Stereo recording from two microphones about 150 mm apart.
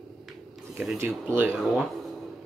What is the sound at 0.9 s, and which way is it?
Speech, 15° right (ahead or behind).